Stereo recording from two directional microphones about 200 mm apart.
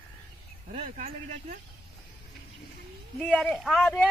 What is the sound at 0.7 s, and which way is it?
Speech, 35° right (ahead or behind).